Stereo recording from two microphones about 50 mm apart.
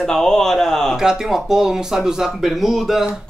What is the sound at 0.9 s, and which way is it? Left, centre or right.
Speech, centre.